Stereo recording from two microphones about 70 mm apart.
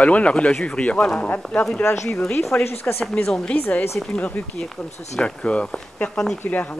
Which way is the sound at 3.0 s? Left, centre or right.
Centre.